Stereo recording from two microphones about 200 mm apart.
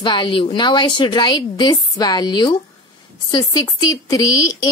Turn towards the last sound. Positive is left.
turn(degrees=15)  # may be behind; listen again after turning